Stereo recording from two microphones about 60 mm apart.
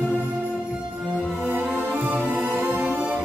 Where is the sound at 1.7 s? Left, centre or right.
Right.